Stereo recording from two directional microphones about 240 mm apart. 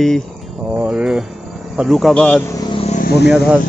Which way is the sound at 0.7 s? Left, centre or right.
Centre.